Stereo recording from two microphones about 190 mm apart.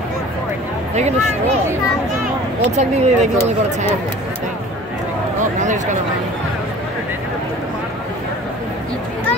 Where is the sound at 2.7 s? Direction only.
35° right (ahead or behind).